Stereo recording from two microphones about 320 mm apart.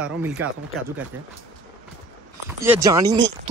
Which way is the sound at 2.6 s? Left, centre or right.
Centre.